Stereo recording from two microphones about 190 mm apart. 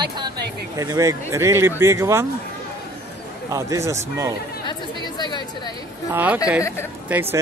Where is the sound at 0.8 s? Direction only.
15° right (ahead or behind).